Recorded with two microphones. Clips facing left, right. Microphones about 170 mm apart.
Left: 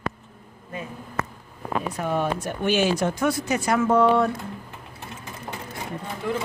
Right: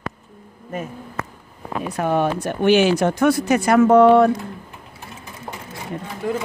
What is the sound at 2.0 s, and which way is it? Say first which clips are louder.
Speech: right 8 dB; 70° right (ahead or behind).